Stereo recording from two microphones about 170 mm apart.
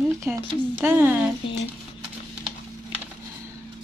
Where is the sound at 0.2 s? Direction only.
15° right (ahead or behind).